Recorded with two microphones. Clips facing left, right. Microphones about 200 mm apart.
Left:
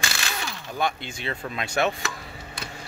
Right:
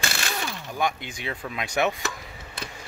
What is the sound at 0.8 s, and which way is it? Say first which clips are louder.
Speech: even; 15° right (ahead or behind).